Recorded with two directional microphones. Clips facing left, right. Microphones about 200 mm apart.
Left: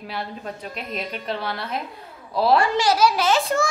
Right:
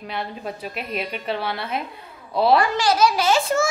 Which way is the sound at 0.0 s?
5° right (ahead or behind).